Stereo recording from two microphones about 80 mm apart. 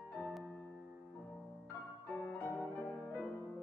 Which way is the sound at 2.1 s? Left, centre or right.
Left.